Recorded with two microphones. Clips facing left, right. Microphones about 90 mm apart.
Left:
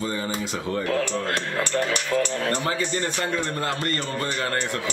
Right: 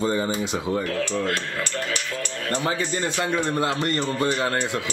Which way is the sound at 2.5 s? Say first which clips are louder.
Right 1 dB; 25° right (ahead or behind).